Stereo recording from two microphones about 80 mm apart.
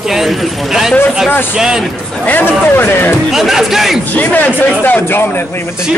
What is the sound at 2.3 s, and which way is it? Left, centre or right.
Speech, left.